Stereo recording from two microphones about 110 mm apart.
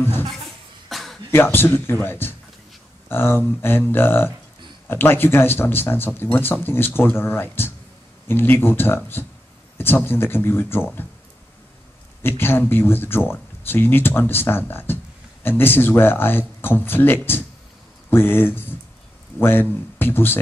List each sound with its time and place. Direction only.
0.8 s a sound: centre (ahead or behind)
1.3 s speech: 20° left (ahead or behind)
12.2 s speech: 20° left (ahead or behind)